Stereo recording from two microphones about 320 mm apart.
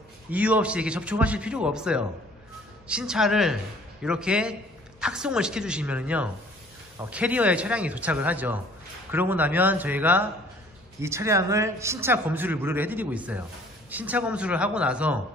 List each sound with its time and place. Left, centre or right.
0.3 s a man's voice: centre